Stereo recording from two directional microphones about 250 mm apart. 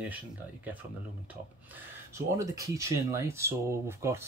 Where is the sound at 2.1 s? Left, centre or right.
Centre.